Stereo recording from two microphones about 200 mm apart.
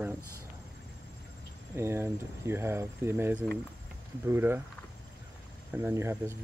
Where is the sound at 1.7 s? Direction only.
15° right (ahead or behind).